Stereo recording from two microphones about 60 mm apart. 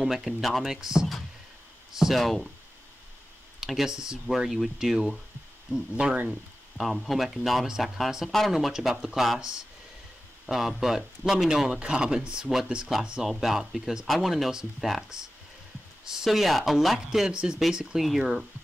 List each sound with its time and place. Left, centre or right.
0.0 s speech: centre
3.6 s speech: centre
6.0 s speech: centre
6.8 s speech: centre
16.3 s speech: centre